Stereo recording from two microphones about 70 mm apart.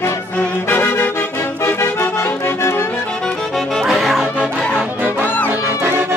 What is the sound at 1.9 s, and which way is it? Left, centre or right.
Music, left.